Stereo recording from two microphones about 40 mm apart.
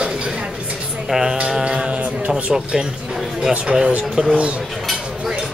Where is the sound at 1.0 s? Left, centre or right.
Centre.